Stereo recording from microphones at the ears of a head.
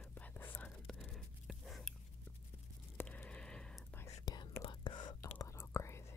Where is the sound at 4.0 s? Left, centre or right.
Left.